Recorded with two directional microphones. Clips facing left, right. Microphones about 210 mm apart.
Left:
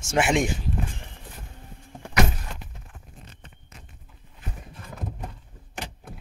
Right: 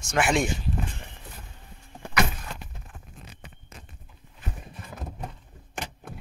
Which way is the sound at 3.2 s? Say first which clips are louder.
Right 2 dB; 10° right (ahead or behind).